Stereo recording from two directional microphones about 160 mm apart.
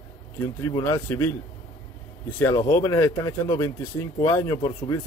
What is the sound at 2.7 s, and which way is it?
Speech, 20° left (ahead or behind).